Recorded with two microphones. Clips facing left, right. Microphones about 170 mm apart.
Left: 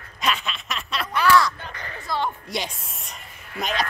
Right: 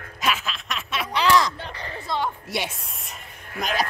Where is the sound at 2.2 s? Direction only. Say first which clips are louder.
Left 1 dB; 5° right (ahead or behind).